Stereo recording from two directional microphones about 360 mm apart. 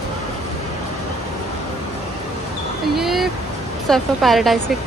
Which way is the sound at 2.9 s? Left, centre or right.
Centre.